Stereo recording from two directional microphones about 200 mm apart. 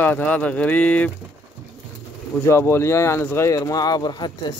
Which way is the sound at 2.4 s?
10° left (ahead or behind).